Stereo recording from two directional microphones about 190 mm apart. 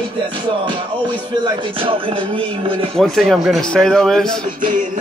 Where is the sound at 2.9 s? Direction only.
Centre (ahead or behind).